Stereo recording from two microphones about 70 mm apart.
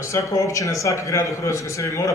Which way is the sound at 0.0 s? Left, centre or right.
Left.